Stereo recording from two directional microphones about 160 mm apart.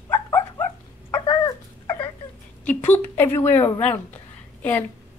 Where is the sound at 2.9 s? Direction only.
15° left (ahead or behind).